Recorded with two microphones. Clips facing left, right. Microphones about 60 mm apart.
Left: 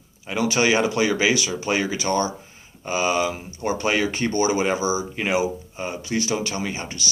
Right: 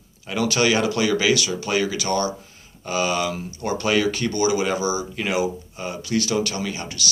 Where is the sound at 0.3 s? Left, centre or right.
Centre.